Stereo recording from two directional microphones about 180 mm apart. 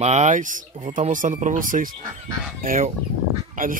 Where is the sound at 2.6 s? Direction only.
50° right (ahead or behind).